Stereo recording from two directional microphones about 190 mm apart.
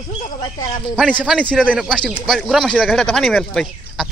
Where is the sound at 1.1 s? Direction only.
Centre (ahead or behind).